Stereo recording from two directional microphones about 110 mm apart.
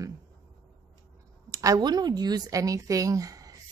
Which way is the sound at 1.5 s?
30° right (ahead or behind).